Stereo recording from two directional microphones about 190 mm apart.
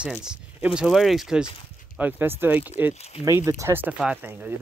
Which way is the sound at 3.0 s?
35° left (ahead or behind).